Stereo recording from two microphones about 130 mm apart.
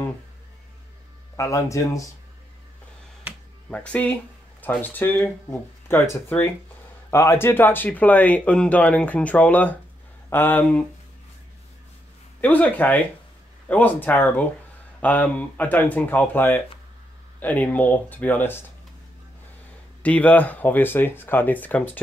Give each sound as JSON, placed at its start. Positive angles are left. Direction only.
{"t": 1.3, "sound": "speech", "side_deg": 25}
{"t": 3.7, "sound": "speech", "side_deg": 10}
{"t": 12.4, "sound": "speech", "side_deg": 10}
{"t": 20.0, "sound": "speech", "side_deg": 10}